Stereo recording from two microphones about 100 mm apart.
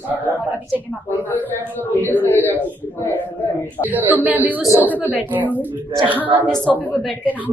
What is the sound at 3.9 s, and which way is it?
Speech, 15° right (ahead or behind).